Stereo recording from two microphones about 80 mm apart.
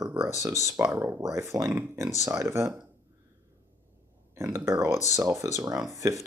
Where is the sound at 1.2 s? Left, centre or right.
Right.